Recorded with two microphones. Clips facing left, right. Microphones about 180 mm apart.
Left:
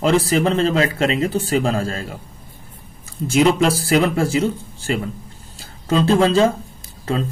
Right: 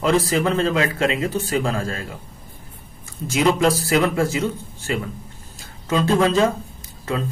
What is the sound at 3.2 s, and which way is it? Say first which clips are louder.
Speech: left 3 dB; 30° left (ahead or behind).